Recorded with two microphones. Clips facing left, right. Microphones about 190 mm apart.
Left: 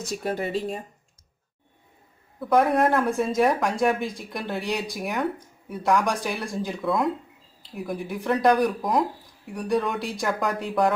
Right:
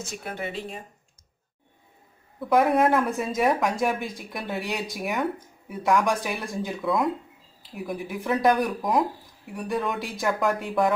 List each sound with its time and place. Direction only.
0.0 s speech: 35° left (ahead or behind)
2.4 s speech: centre (ahead or behind)